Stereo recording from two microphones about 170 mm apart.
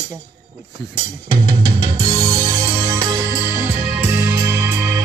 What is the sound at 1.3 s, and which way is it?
Drum, 30° right (ahead or behind).